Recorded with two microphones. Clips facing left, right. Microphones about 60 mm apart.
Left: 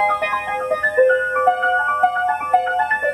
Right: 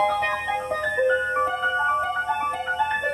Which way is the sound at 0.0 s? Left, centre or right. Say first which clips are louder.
Left 4 dB; left.